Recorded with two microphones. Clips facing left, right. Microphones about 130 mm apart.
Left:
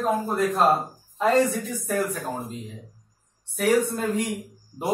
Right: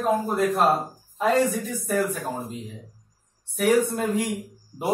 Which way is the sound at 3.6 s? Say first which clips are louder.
Right 1 dB; 15° right (ahead or behind).